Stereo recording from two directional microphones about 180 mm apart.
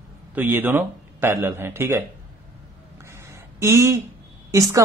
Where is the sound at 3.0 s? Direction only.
15° right (ahead or behind).